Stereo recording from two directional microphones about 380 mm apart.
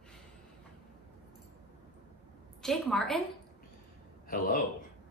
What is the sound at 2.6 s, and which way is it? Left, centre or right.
Speech, centre.